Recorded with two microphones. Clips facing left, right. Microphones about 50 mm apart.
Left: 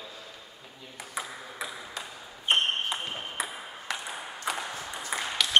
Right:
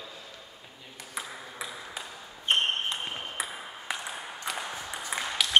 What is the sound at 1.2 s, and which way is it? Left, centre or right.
Ping, centre.